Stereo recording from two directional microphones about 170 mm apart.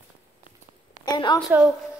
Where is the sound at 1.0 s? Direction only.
25° left (ahead or behind).